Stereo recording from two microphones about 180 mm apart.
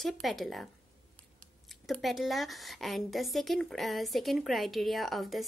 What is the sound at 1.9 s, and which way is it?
A woman's voice, centre (ahead or behind).